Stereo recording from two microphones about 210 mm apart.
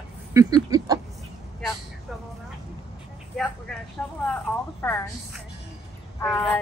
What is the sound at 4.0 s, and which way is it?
Speech, 5° left (ahead or behind).